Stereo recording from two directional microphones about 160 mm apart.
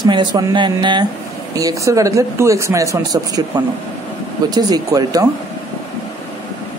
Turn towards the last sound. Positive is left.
turn(degrees=-20)  # may be behind; listen again after turning